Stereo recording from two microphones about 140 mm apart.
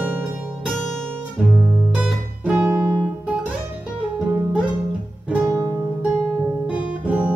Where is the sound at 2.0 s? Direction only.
5° right (ahead or behind).